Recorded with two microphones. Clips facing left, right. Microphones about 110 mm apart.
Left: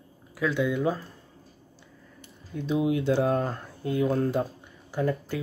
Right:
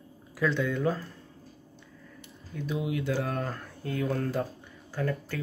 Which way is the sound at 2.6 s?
25° left (ahead or behind).